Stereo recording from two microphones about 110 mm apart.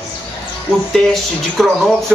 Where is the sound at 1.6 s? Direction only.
Centre (ahead or behind).